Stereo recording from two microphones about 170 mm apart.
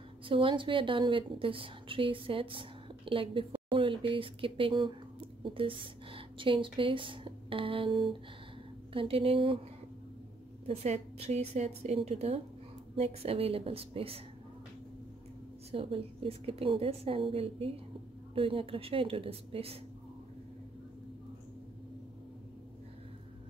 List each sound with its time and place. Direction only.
0.3 s a woman's voice: 30° right (ahead or behind)
10.7 s a woman's voice: 40° right (ahead or behind)
15.7 s a woman's voice: 35° right (ahead or behind)